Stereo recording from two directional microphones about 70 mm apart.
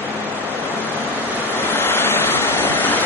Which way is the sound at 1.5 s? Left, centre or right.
Left.